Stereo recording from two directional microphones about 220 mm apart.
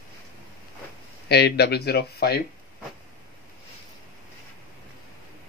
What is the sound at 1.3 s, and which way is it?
Speech, 50° left (ahead or behind).